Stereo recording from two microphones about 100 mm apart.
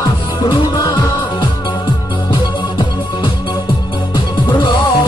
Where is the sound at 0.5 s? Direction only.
45° left (ahead or behind).